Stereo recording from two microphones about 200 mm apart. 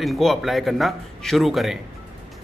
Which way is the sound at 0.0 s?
Centre (ahead or behind).